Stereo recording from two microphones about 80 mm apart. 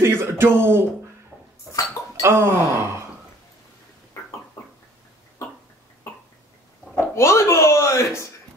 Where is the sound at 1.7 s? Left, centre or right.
Left.